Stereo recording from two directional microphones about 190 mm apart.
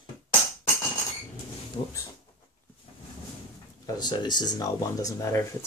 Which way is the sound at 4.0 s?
25° left (ahead or behind).